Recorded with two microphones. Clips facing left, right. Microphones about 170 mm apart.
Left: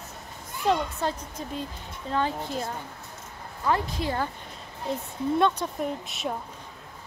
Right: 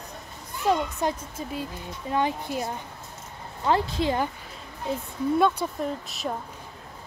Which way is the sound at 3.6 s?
25° right (ahead or behind).